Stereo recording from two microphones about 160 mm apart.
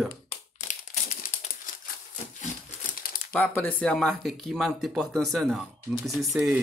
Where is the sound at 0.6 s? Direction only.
50° left (ahead or behind).